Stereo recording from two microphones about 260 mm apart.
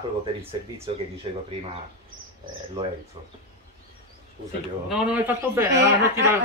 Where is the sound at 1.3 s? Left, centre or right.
Centre.